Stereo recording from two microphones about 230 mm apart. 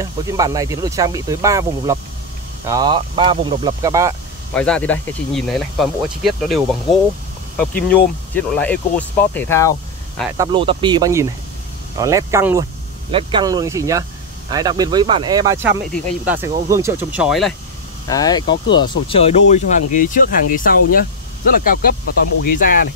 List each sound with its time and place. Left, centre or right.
0.0 s speech: centre
4.6 s speech: centre
10.3 s speech: centre
18.0 s speech: centre; by 22.8 s left